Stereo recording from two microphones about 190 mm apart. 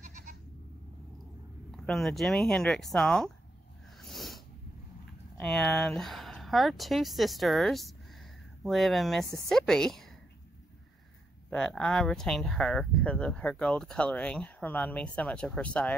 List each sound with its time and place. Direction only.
0.0 s goat: 40° right (ahead or behind)
1.7 s speech: centre (ahead or behind)
4.0 s snort: centre (ahead or behind)
5.4 s speech: 5° left (ahead or behind)
11.5 s speech: 5° left (ahead or behind)